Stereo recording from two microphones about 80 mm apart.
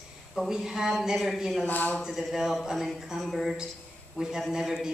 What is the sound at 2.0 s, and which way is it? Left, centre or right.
Speech, centre.